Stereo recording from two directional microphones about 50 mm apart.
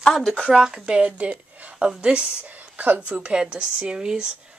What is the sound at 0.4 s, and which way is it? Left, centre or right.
A woman's voice, centre.